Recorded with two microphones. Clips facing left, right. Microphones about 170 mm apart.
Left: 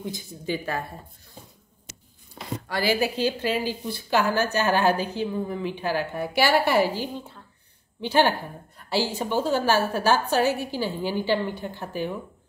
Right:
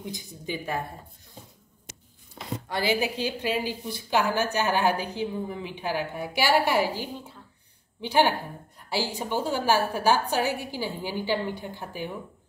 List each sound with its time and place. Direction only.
0.0 s a woman's voice: 15° right (ahead or behind)
2.7 s a woman's voice: 20° right (ahead or behind)
8.0 s a woman's voice: 15° right (ahead or behind)